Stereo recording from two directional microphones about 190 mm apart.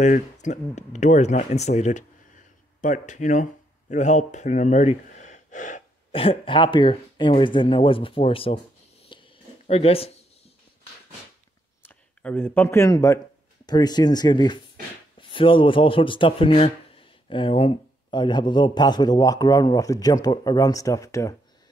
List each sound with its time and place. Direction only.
0.0 s speech: 40° left (ahead or behind)
6.1 s speech: 30° left (ahead or behind)
9.1 s a sound: 30° left (ahead or behind)
11.8 s a man's voice: 10° left (ahead or behind)